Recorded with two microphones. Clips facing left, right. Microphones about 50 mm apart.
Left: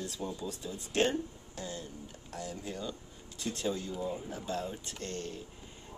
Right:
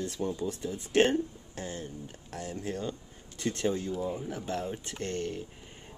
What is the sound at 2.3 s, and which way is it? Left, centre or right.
Speech, right.